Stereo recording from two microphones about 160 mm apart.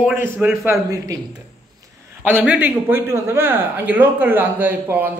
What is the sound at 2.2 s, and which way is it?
A man's voice, 10° right (ahead or behind).